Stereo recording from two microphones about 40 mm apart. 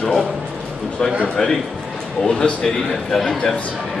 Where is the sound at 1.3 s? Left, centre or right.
Centre.